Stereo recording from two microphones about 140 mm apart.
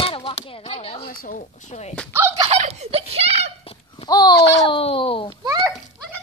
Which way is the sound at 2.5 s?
50° right (ahead or behind).